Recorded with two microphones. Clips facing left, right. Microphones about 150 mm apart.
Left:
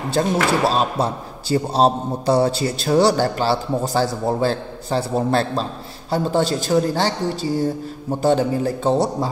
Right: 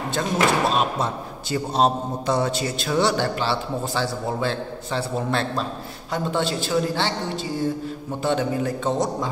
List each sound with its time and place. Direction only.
0.1 s speech: 35° left (ahead or behind)
8.2 s speech: 35° left (ahead or behind)